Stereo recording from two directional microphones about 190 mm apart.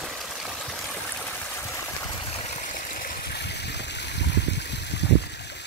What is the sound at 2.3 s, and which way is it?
Stream, 35° left (ahead or behind).